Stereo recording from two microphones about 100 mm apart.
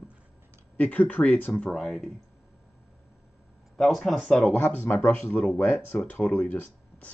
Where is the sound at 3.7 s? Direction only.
Centre (ahead or behind).